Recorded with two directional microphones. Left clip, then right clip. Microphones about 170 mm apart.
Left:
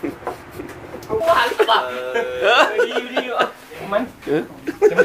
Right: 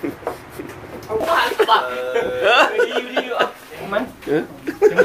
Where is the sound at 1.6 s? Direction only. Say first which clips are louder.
Right 1 dB; 5° left (ahead or behind).